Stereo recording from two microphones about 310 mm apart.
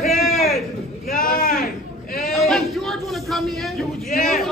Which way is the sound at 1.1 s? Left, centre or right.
Left.